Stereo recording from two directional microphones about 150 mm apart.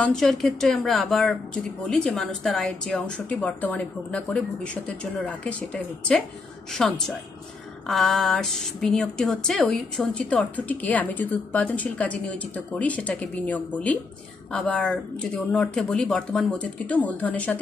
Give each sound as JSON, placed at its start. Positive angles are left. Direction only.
{"t": 0.0, "sound": "speech", "side_deg": 5}